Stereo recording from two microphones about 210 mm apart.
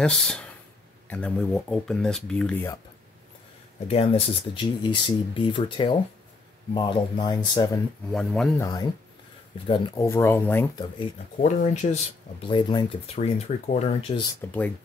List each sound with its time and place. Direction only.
0.0 s speech: 5° left (ahead or behind)
3.8 s speech: 30° left (ahead or behind)
8.1 s speech: centre (ahead or behind)
8.5 s speech: 15° left (ahead or behind)
11.4 s speech: 35° left (ahead or behind)
14.4 s speech: 10° left (ahead or behind)